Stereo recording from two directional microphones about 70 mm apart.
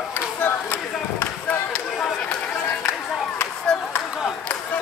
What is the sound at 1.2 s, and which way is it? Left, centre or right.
Basketball bounce, centre.